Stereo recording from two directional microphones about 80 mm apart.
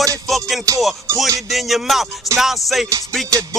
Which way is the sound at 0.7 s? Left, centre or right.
Right.